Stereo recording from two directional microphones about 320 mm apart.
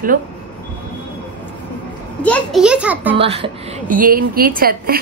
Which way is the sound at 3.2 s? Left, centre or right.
Centre.